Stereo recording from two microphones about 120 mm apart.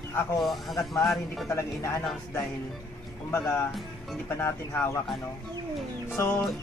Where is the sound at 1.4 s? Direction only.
25° left (ahead or behind).